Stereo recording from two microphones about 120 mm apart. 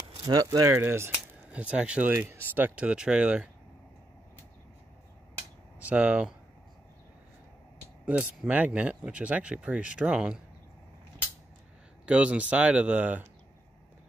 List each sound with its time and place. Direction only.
0.2 s speech: 35° right (ahead or behind)
1.5 s speech: 10° right (ahead or behind)
5.8 s speech: 10° right (ahead or behind)
8.0 s speech: 10° right (ahead or behind)
12.1 s speech: 10° right (ahead or behind)